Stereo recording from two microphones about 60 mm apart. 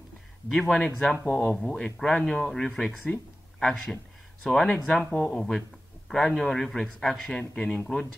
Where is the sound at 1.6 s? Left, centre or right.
Centre.